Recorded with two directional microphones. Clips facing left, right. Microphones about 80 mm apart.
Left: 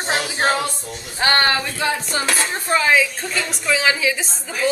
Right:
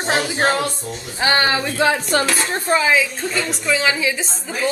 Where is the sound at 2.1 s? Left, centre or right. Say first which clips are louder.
Right 6 dB; right.